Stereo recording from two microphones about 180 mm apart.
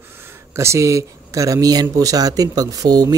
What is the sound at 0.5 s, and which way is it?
Speech, 15° right (ahead or behind).